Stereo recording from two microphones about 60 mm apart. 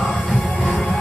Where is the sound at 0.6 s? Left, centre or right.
Left.